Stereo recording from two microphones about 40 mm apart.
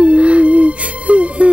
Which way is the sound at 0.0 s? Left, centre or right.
Right.